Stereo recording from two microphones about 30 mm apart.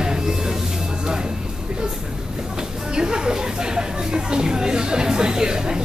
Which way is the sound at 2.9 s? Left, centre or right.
Right.